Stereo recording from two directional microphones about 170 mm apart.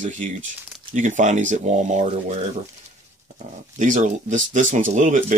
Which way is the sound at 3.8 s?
45° right (ahead or behind).